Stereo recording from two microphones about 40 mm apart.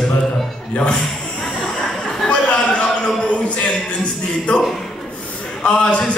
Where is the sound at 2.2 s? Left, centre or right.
Left.